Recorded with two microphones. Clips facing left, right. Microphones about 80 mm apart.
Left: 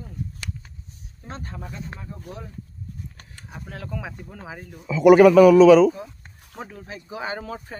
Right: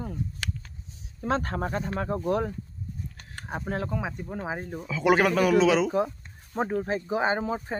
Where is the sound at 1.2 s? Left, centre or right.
Right.